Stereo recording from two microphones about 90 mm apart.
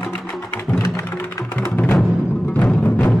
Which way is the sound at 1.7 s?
20° left (ahead or behind).